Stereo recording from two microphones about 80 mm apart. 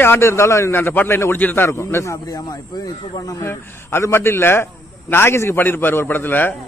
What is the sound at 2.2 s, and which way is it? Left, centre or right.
Speech, left.